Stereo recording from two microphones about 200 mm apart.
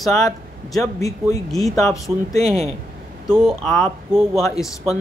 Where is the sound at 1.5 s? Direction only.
Centre (ahead or behind).